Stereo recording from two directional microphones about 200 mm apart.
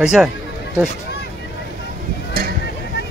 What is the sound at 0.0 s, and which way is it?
Speech, 5° right (ahead or behind).